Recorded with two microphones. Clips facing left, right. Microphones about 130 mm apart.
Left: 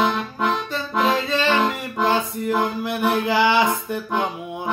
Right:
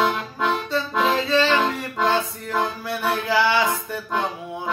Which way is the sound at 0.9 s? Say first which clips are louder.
Even; 15° left (ahead or behind).